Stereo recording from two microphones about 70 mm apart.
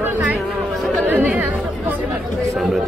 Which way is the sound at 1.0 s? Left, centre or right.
Right.